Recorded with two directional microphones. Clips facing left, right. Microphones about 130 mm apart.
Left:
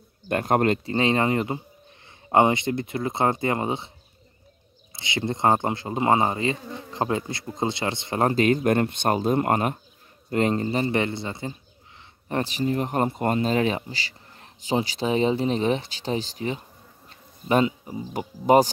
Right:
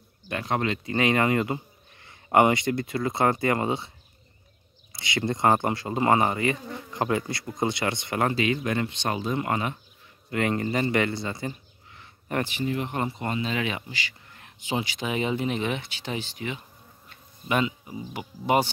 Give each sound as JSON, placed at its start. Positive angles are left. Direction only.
{"t": 0.3, "sound": "speech", "side_deg": 50}
{"t": 0.8, "sound": "insect", "side_deg": 25}
{"t": 4.9, "sound": "insect", "side_deg": 20}
{"t": 10.3, "sound": "insect", "side_deg": 30}
{"t": 12.0, "sound": "speech", "side_deg": 25}